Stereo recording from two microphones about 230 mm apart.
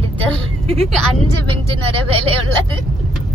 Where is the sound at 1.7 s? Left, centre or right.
Right.